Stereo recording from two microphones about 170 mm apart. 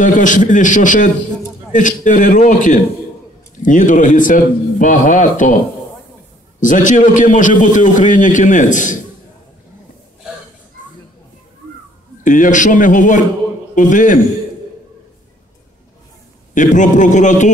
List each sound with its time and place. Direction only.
0.0 s a man's voice: 50° left (ahead or behind)
6.6 s a man's voice: 50° left (ahead or behind)
12.2 s a man's voice: 50° left (ahead or behind)
16.5 s a man's voice: 45° left (ahead or behind)